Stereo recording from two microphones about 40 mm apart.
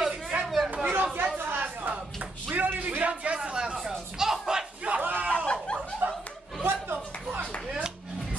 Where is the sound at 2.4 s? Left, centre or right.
Right.